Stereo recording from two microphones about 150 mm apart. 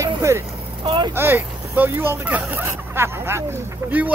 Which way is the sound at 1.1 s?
15° right (ahead or behind).